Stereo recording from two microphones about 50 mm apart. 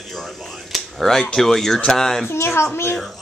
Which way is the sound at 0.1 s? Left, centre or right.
Centre.